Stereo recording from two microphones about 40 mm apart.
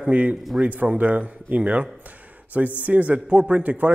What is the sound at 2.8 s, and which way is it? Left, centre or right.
Speech, right.